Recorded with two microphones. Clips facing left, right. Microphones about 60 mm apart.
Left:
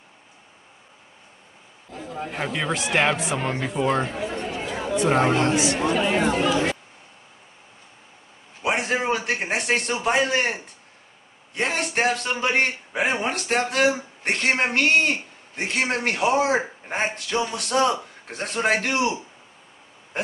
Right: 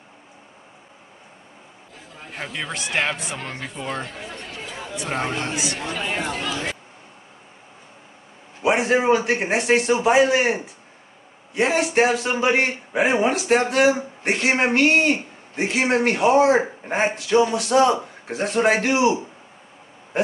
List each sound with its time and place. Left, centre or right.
2.2 s a man's voice: centre
3.3 s speech: centre
3.6 s speech: centre
4.4 s chatter: left
4.9 s a man's voice: centre
5.8 s speech: left
8.6 s a man's voice: centre